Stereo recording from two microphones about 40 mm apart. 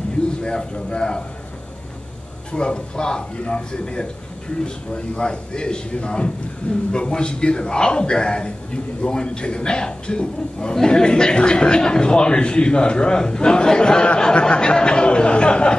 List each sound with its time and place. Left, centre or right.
0.4 s a man's voice: left
2.5 s a man's voice: left